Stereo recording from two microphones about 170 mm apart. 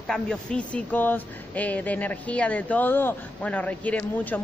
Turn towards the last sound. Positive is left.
turn(degrees=10)  # may be behind; listen again after turning